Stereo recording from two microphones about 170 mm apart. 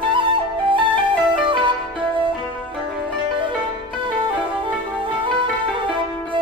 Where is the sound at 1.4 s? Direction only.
30° right (ahead or behind).